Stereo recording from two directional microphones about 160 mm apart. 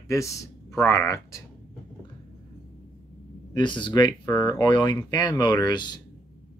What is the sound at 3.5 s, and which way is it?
Speech, 30° left (ahead or behind).